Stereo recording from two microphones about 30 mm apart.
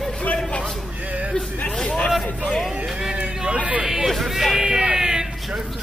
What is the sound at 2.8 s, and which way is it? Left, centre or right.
Vehicle, centre.